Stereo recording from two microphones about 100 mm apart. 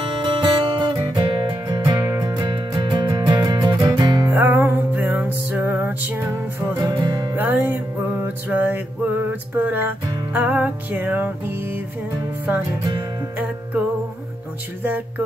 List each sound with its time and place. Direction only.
0.2 s music: 50° right (ahead or behind)
4.3 s music: 20° right (ahead or behind)
6.7 s music: 35° right (ahead or behind)
7.3 s music: 20° right (ahead or behind)
14.8 s music: 20° right (ahead or behind)